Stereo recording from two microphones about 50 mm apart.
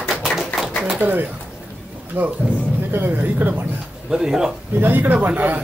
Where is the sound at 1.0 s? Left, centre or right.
Right.